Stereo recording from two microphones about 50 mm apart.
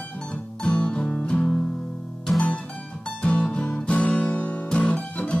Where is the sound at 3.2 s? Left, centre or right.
Left.